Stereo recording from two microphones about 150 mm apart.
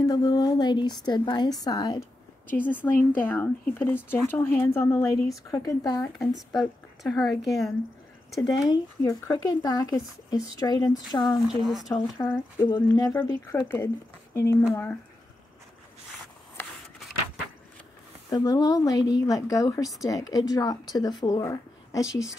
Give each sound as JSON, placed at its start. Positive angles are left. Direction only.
{"t": 0.0, "sound": "speech", "side_deg": 25}
{"t": 2.5, "sound": "a woman's voice", "side_deg": 10}
{"t": 6.1, "sound": "speech", "side_deg": 0}
{"t": 8.4, "sound": "speech", "side_deg": 25}
{"t": 11.3, "sound": "speech", "side_deg": 0}
{"t": 11.9, "sound": "a woman's voice", "side_deg": 15}
{"t": 16.6, "sound": "a sound", "side_deg": 15}
{"t": 18.3, "sound": "speech", "side_deg": 25}